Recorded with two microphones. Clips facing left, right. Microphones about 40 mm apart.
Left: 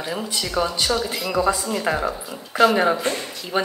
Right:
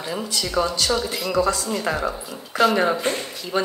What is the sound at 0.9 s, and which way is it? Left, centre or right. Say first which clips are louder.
A woman's voice: even; centre.